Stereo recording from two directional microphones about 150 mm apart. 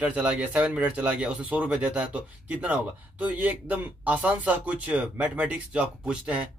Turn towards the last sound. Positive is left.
turn(degrees=-5)  # may be behind; listen again after turning